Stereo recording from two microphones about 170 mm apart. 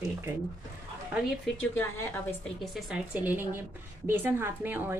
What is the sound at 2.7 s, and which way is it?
Speech, 5° right (ahead or behind).